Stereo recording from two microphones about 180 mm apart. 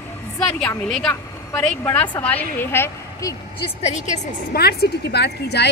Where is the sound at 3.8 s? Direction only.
35° left (ahead or behind).